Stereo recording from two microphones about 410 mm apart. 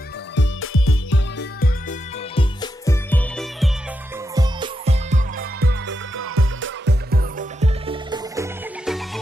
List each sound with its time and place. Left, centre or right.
0.4 s music: left; by 3.7 s centre
4.4 s music: centre